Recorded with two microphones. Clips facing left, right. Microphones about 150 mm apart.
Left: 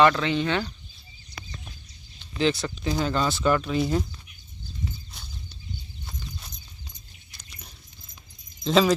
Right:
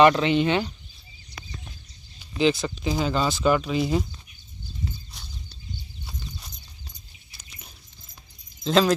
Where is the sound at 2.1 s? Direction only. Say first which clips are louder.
Right 2 dB; 5° right (ahead or behind).